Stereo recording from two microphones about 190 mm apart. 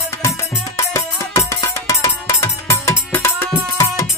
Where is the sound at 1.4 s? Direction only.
15° left (ahead or behind).